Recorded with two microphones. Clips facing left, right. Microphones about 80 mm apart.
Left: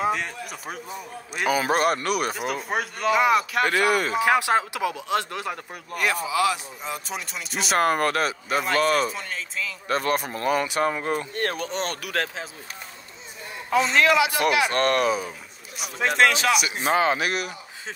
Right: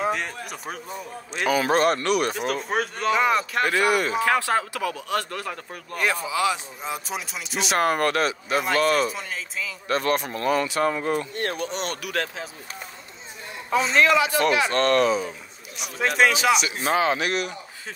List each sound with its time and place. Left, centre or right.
0.1 s speech: centre
4.2 s speech: centre
5.9 s a man's voice: right
6.9 s speech: centre
11.3 s speech: left
13.9 s a man's voice: right
14.7 s speech: centre
16.2 s speech: centre
16.5 s speech: centre